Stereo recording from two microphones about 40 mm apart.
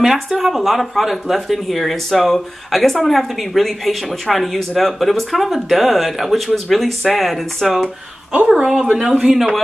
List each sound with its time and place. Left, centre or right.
0.0 s speech: centre
8.8 s speech: right